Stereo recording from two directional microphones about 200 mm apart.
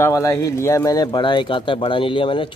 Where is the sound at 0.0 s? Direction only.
15° left (ahead or behind).